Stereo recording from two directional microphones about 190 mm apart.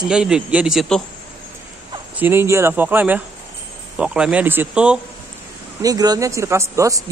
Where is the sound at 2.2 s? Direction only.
10° right (ahead or behind).